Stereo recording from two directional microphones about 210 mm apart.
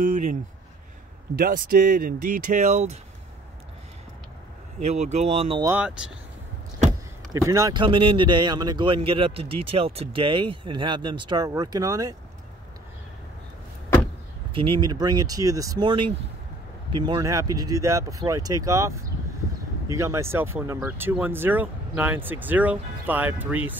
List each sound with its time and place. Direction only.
1.4 s speech: 45° right (ahead or behind)
4.7 s speech: 35° right (ahead or behind)
5.7 s speech: 5° right (ahead or behind)
7.3 s speech: 15° right (ahead or behind)
14.5 s speech: 25° right (ahead or behind); by 23.8 s 10° right (ahead or behind)